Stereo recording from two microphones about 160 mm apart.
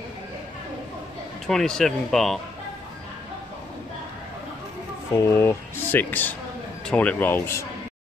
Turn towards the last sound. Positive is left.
turn(degrees=15)  # may be behind; listen again after turning